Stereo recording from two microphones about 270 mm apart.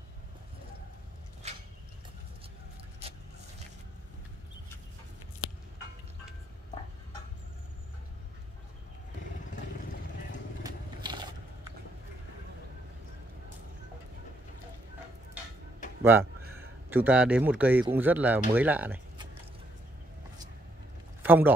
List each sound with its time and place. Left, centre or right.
10.6 s vehicle: centre
16.0 s speech: centre
21.2 s a man's voice: centre